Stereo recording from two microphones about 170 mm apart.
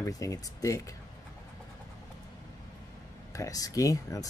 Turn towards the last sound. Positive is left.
turn(degrees=20)  # may be behind; listen again after turning